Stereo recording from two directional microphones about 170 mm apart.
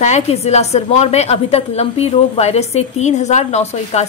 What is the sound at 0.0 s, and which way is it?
Speech, 40° left (ahead or behind).